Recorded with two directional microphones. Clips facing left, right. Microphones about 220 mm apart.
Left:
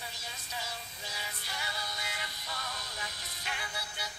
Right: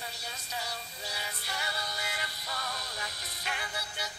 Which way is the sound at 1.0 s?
70° right (ahead or behind).